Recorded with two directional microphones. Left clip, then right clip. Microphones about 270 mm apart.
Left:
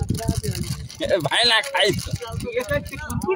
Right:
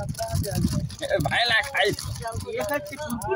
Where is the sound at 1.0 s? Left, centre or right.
Left.